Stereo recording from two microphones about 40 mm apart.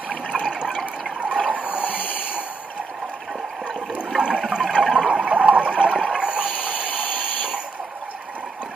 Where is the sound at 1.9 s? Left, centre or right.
Left.